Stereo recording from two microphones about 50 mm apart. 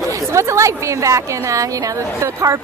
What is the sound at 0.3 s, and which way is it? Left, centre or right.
A woman's voice, right.